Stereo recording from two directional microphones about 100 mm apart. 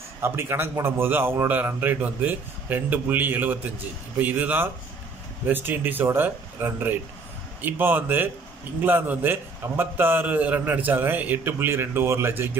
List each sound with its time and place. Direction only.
0.2 s a man's voice: 25° right (ahead or behind)